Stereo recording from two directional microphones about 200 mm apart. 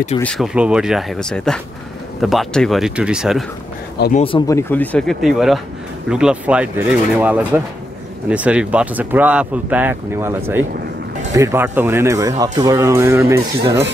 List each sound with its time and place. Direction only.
0.2 s speech: centre (ahead or behind)
4.1 s speech: 30° left (ahead or behind)
4.5 s speech: 10° left (ahead or behind); by 13.8 s 15° right (ahead or behind)